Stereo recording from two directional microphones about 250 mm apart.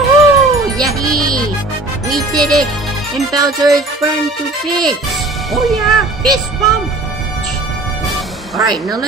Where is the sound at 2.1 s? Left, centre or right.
Centre.